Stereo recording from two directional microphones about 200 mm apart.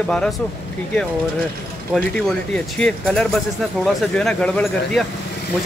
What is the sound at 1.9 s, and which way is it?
Speech, 5° left (ahead or behind).